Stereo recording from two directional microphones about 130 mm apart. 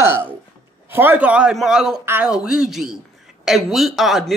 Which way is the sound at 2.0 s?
20° right (ahead or behind).